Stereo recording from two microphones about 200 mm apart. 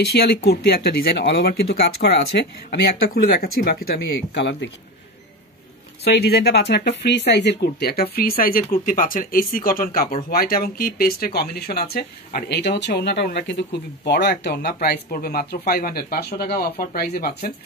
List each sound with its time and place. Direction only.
0.0 s speech: 55° left (ahead or behind)
6.0 s speech: 55° left (ahead or behind)